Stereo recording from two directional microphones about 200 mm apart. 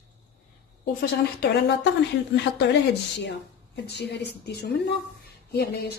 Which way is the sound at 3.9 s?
55° left (ahead or behind).